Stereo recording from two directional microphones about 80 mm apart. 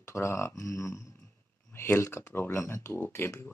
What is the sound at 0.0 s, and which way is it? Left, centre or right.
Speech, left.